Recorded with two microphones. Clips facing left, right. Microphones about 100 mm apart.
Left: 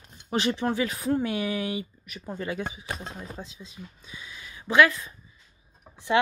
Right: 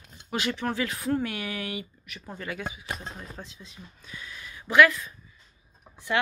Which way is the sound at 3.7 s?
20° left (ahead or behind).